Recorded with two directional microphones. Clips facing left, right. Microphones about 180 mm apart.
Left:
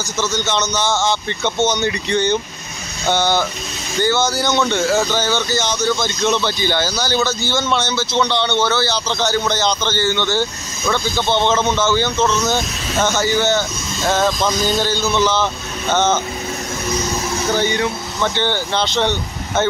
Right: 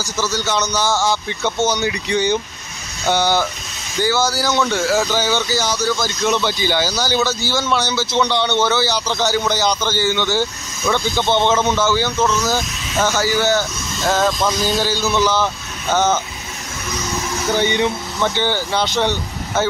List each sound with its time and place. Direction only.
0.2 s speech: 10° right (ahead or behind)
13.3 s speech: 20° left (ahead or behind)
13.6 s speech: centre (ahead or behind)
17.6 s speech: 20° right (ahead or behind)
18.2 s speech: 10° right (ahead or behind)